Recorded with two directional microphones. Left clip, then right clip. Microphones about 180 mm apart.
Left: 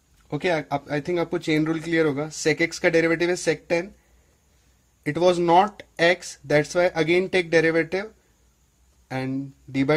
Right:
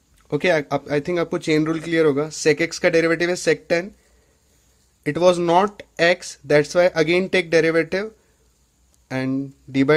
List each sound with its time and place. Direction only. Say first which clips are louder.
0.3 s speech: right 5 dB; 30° right (ahead or behind)
5.0 s speech: right 3 dB; 25° right (ahead or behind)